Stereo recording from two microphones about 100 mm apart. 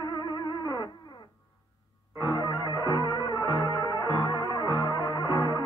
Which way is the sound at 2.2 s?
40° left (ahead or behind).